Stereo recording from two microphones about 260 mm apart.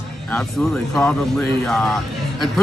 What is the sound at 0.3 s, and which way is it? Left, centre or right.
A man's voice, centre.